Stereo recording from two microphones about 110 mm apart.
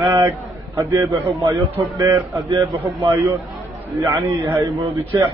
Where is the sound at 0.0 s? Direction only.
30° right (ahead or behind).